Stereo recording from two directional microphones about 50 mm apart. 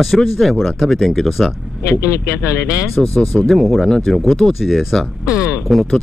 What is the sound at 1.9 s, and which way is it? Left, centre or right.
Speech, left.